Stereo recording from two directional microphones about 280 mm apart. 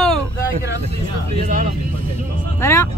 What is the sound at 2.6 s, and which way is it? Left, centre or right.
Speech, centre.